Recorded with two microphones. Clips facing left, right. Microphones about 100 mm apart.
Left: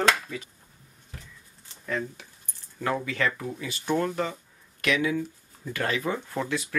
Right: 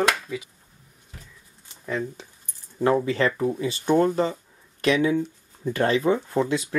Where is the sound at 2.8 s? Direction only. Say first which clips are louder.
Right 7 dB; 30° right (ahead or behind).